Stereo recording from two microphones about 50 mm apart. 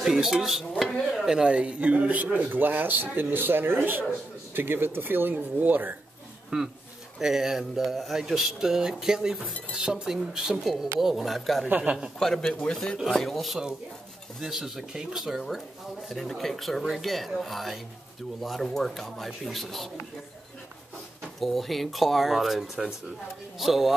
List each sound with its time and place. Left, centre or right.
0.0 s speech: centre
1.8 s a man's voice: right
6.5 s speech: centre
12.2 s a man's voice: centre
12.7 s a man's voice: centre
14.4 s speech: centre
21.4 s speech: centre